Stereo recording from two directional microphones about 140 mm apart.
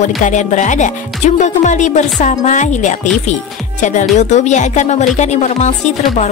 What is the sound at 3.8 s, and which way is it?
Music, 60° left (ahead or behind).